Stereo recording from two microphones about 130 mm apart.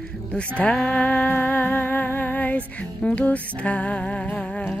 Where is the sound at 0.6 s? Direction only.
10° left (ahead or behind).